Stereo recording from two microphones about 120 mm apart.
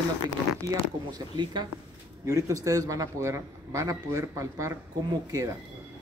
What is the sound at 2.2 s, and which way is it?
A man's voice, 25° right (ahead or behind).